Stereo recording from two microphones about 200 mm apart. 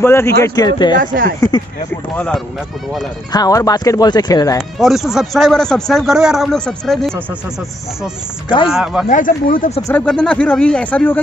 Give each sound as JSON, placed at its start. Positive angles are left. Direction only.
{"t": 0.0, "sound": "speech", "side_deg": 10}
{"t": 0.9, "sound": "speech", "side_deg": -45}
{"t": 2.1, "sound": "a man's voice", "side_deg": 5}
{"t": 3.3, "sound": "speech", "side_deg": 20}
{"t": 4.7, "sound": "a man's voice", "side_deg": 0}
{"t": 8.6, "sound": "a man's voice", "side_deg": 0}
{"t": 9.1, "sound": "speech", "side_deg": 40}
{"t": 9.9, "sound": "speech", "side_deg": 5}